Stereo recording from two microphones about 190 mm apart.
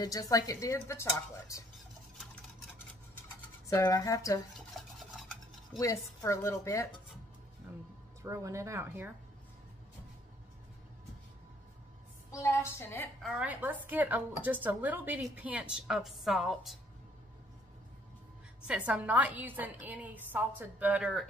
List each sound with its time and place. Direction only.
0.0 s speech: 20° left (ahead or behind)
3.7 s speech: 20° left (ahead or behind)
4.6 s a sound: centre (ahead or behind)
5.7 s speech: 15° left (ahead or behind)
8.2 s a woman's voice: 15° right (ahead or behind)
12.3 s speech: 15° left (ahead or behind)
13.2 s a woman's voice: 5° right (ahead or behind)
18.7 s a woman's voice: 5° right (ahead or behind)